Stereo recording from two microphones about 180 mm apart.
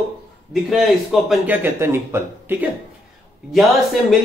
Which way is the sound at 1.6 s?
15° right (ahead or behind).